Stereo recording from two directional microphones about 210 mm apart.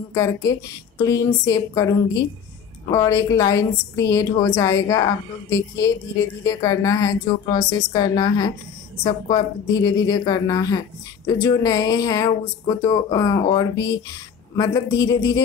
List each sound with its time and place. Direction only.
0.1 s a woman's voice: 15° left (ahead or behind)